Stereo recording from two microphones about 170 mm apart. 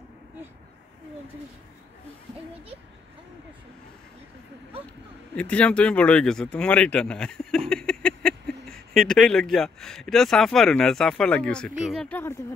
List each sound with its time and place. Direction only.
5.3 s speech: 5° left (ahead or behind)